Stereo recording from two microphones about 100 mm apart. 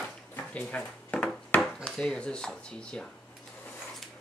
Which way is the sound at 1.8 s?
10° left (ahead or behind).